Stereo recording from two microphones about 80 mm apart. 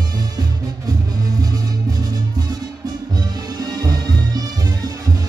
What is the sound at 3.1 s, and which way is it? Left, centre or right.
Music, right.